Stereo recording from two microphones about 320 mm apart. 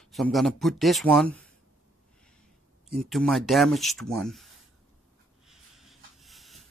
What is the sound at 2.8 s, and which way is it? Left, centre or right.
Speech, centre.